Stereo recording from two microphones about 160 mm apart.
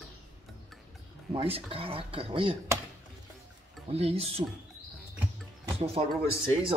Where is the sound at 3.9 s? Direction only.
40° right (ahead or behind).